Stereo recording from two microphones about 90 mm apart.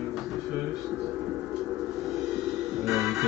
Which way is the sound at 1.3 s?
15° right (ahead or behind).